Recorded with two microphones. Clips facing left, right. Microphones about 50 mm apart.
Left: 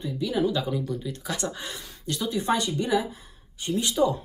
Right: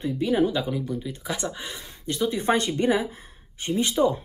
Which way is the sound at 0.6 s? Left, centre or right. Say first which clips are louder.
Right 1 dB; centre.